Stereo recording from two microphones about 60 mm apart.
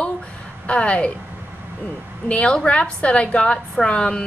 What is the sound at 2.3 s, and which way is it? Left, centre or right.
A woman's voice, centre.